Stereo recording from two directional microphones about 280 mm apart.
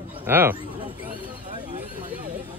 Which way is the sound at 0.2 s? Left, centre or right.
Centre.